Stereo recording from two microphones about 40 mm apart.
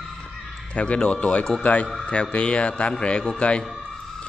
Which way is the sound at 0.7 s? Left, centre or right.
Left.